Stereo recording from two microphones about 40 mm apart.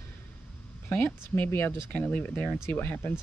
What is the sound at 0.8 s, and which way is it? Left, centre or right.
Speech, left.